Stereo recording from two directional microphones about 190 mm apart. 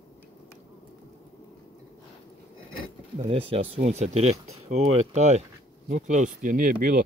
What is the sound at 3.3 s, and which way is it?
Speech, 30° right (ahead or behind).